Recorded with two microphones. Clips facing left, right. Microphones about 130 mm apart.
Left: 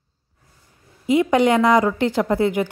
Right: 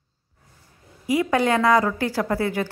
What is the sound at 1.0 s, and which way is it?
A woman's voice, 20° left (ahead or behind).